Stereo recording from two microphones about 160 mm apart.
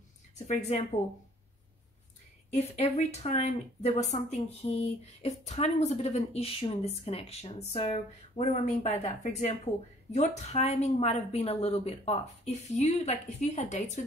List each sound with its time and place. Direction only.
0.5 s speech: 45° left (ahead or behind)
2.5 s speech: 45° left (ahead or behind)